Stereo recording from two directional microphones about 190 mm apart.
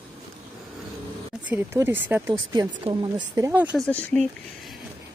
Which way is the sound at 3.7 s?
5° left (ahead or behind).